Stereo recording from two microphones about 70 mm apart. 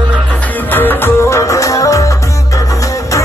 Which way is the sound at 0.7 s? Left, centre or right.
Left.